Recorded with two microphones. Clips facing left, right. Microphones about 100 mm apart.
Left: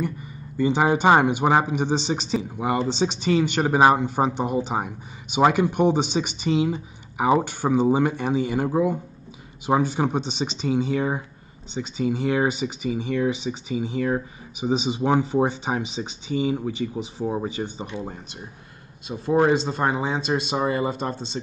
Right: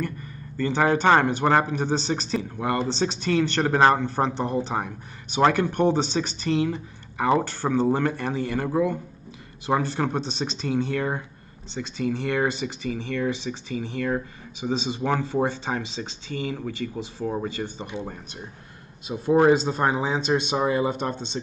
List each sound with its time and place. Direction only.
0.0 s speech: 10° left (ahead or behind)
10.3 s speech: centre (ahead or behind)
19.0 s speech: centre (ahead or behind)